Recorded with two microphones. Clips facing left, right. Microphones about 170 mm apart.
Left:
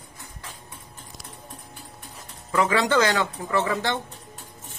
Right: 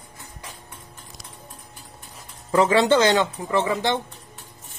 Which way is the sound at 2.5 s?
30° right (ahead or behind).